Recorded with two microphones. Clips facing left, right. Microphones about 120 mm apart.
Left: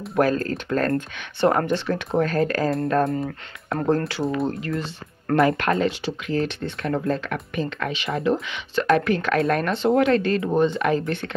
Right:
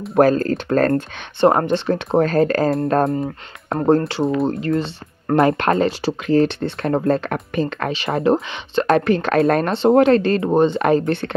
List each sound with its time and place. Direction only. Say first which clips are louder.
0.1 s speech: right 6 dB; 30° right (ahead or behind)